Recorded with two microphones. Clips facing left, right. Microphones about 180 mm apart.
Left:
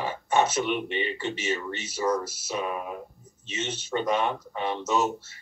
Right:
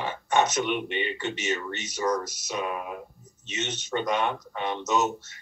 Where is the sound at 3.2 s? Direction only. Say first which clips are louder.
Right 1 dB; 30° left (ahead or behind).